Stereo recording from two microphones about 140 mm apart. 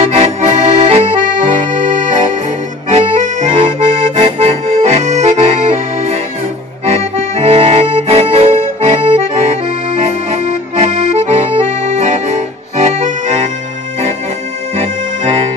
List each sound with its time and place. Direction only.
0.0 s accordion: 45° right (ahead or behind)
2.9 s accordion: 50° right (ahead or behind)
14.8 s accordion: 45° right (ahead or behind)